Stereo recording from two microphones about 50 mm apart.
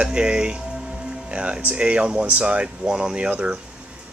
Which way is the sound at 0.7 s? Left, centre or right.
Centre.